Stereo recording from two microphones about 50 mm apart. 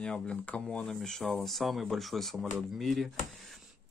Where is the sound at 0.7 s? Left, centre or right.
Centre.